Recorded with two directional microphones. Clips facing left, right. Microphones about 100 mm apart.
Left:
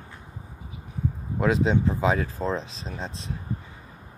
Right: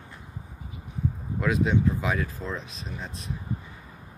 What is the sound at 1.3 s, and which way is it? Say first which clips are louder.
Speech: left 3 dB; 25° left (ahead or behind).